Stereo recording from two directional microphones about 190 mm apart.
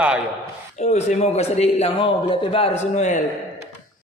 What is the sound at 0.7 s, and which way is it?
A man's voice, 35° left (ahead or behind).